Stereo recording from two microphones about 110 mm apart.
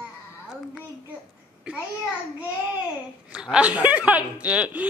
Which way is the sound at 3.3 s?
5° right (ahead or behind).